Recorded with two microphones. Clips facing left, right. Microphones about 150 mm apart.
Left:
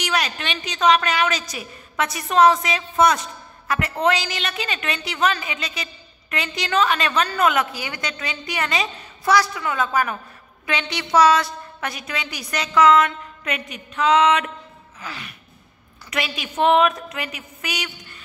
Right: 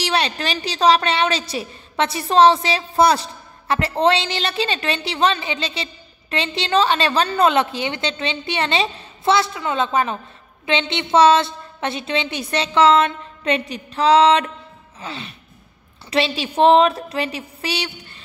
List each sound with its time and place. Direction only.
0.0 s a woman's voice: 30° right (ahead or behind)